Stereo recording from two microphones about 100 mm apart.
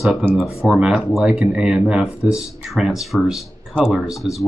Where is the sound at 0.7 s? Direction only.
10° right (ahead or behind).